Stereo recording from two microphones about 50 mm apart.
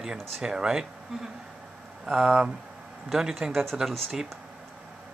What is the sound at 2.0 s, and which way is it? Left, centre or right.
Speech, centre.